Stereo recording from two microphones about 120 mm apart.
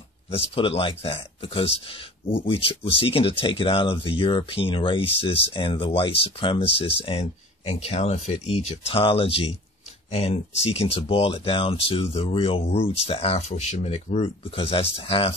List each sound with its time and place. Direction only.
0.4 s speech: 50° left (ahead or behind)